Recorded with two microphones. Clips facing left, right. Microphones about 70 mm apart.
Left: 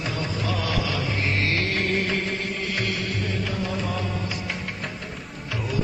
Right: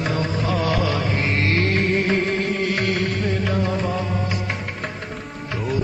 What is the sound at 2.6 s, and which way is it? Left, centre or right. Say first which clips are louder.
Music: right 6 dB; right.